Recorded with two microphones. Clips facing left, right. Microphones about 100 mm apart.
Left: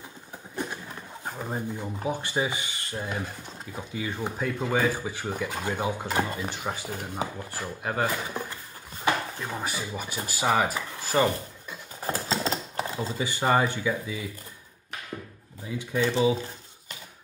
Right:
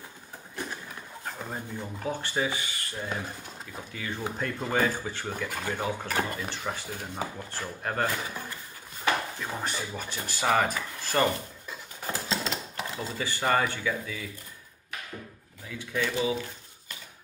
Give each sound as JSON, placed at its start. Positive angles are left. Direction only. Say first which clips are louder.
{"t": 1.2, "sound": "speech", "louder": "left 5 dB", "side_deg": 15}
{"t": 9.5, "sound": "speech", "louder": "even", "side_deg": 5}
{"t": 12.0, "sound": "a sound", "louder": "left 4 dB", "side_deg": 35}
{"t": 12.9, "sound": "speech", "louder": "left 3 dB", "side_deg": 15}
{"t": 15.6, "sound": "speech", "louder": "left 4 dB", "side_deg": 20}